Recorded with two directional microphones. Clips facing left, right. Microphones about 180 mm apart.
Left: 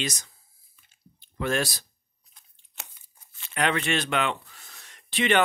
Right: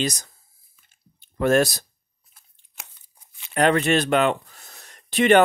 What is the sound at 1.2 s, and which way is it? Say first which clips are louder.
Speech: right 9 dB; 50° right (ahead or behind).